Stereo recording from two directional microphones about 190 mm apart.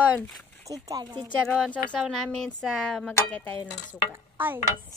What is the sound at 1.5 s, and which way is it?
Dishes, 5° left (ahead or behind).